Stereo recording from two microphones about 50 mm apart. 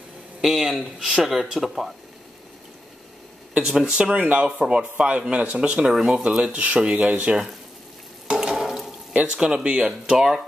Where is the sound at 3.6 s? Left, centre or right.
Centre; by 5.6 s right.